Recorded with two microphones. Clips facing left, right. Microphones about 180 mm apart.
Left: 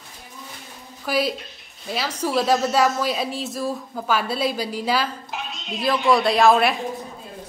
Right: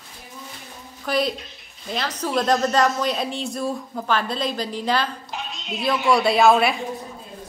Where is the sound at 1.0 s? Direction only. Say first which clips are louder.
Even; 5° left (ahead or behind).